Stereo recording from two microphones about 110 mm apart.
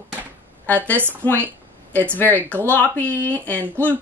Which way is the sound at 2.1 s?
15° left (ahead or behind).